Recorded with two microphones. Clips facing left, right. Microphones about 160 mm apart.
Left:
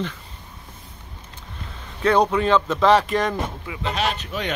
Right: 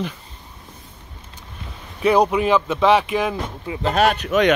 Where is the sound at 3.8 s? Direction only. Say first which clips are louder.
Right 7 dB; 55° right (ahead or behind); by 4.5 s 75° right (ahead or behind).